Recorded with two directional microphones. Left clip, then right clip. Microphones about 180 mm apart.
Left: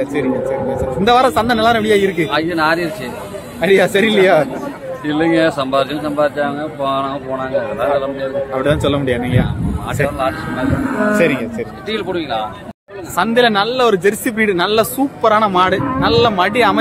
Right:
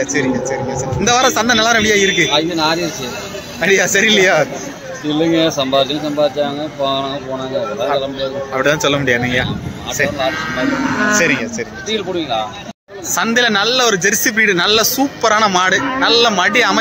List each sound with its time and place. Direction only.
0.0 s speech: 5° left (ahead or behind)
2.3 s a man's voice: 35° right (ahead or behind)
3.6 s speech: 5° left (ahead or behind)
5.2 s a man's voice: 40° right (ahead or behind)
8.5 s speech: 5° left (ahead or behind)
11.1 s speech: 5° left (ahead or behind)
11.9 s speech: 45° right (ahead or behind)
13.1 s speech: centre (ahead or behind)